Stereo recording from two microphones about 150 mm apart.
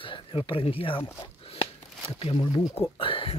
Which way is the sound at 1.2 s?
40° left (ahead or behind).